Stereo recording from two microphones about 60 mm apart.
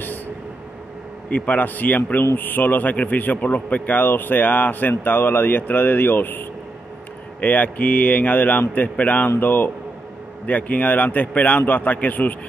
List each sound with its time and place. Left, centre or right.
1.3 s a man's voice: left